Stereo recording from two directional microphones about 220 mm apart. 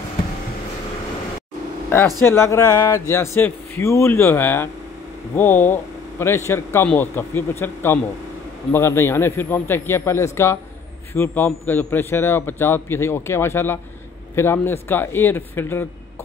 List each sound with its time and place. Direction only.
2.2 s a man's voice: 10° left (ahead or behind)